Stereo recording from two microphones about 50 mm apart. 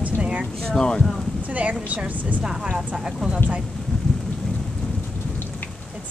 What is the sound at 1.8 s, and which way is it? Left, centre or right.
Speech, right.